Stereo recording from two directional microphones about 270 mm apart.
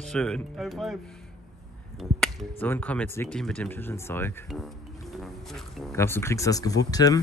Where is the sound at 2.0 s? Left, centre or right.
Centre.